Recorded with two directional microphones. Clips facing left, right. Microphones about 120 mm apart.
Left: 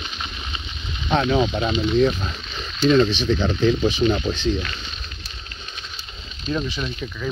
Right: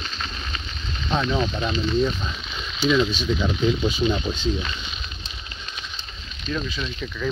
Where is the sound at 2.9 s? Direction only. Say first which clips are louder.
Left 4 dB; 70° left (ahead or behind); by 4.4 s 85° left.